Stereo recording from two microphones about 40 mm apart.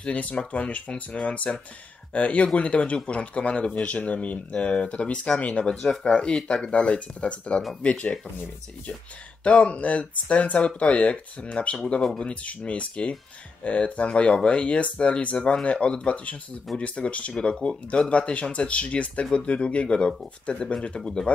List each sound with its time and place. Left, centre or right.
0.0 s speech: left
5.7 s speech: centre
6.6 s speech: left
9.4 s speech: left
12.0 s speech: centre
12.3 s speech: left